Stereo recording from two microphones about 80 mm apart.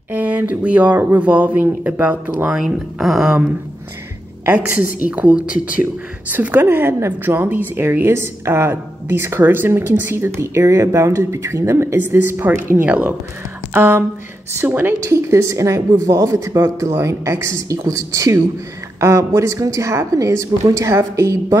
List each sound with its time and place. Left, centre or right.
0.1 s speech: right
2.5 s speech: centre
4.5 s a woman's voice: centre
15.0 s a woman's voice: right